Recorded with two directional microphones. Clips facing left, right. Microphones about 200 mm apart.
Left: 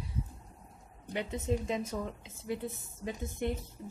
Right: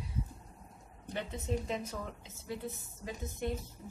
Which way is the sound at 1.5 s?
15° left (ahead or behind).